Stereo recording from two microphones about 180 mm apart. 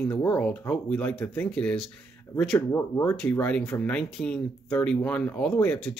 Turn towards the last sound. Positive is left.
turn(degrees=5)  # may be behind; listen again after turning